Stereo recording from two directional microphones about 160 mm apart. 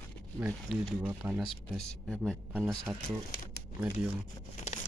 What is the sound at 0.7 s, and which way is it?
Speech, centre (ahead or behind).